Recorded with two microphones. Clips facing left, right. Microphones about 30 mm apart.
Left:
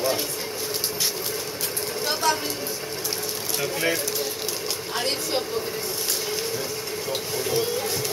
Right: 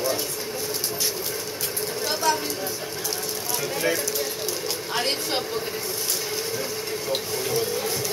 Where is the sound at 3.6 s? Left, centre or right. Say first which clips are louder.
Left 1 dB; left.